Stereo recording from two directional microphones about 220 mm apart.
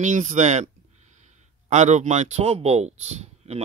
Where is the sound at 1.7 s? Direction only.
30° right (ahead or behind).